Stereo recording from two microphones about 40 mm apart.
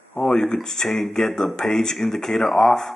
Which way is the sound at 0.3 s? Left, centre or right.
Centre.